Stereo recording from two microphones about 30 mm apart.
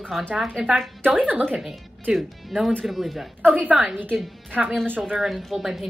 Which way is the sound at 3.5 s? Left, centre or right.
Right.